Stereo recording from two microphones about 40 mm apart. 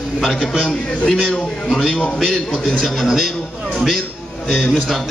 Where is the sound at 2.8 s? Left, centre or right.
Centre.